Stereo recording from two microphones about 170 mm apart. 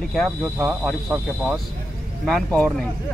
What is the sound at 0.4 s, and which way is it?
Speech, 10° right (ahead or behind).